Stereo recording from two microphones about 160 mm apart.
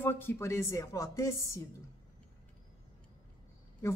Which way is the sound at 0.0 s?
15° left (ahead or behind).